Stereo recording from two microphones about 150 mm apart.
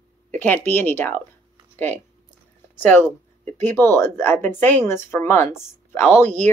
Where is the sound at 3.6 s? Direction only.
10° left (ahead or behind).